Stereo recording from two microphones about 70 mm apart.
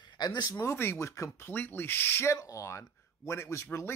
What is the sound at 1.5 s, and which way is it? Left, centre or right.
Speech, left.